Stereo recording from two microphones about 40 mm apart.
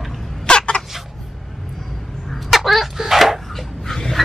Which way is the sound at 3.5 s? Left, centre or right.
Centre.